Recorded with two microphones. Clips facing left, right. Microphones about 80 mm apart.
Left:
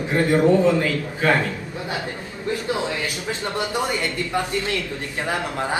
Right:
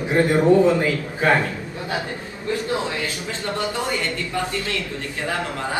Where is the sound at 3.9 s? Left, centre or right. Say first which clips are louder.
Left 1 dB; left.